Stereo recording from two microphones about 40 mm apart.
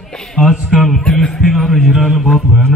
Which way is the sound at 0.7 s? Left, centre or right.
Centre.